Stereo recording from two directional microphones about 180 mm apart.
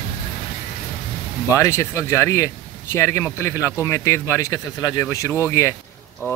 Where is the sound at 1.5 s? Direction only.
15° left (ahead or behind).